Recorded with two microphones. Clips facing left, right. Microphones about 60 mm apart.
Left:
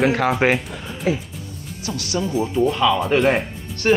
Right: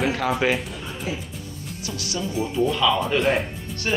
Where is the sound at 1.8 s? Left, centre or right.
Left.